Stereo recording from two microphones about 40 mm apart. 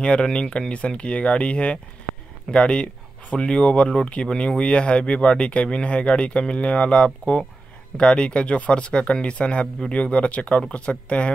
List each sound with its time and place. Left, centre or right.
0.0 s speech: left